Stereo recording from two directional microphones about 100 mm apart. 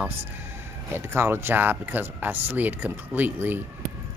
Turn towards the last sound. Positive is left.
turn(degrees=-20)  # may be behind; listen again after turning